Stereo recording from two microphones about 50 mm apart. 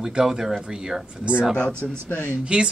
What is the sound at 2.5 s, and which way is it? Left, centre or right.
Speech, right.